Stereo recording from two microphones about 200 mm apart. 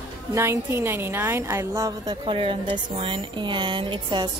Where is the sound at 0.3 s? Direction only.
15° right (ahead or behind).